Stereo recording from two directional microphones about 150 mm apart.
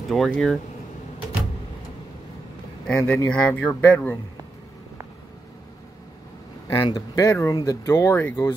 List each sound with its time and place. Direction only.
0.1 s speech: centre (ahead or behind)
2.9 s speech: 15° left (ahead or behind)
6.8 s speech: 25° left (ahead or behind)